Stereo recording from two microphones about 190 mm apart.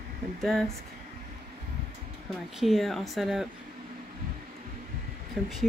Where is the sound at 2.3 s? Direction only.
Centre (ahead or behind).